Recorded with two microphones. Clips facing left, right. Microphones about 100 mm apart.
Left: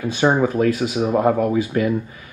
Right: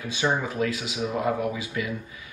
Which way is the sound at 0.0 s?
45° left (ahead or behind).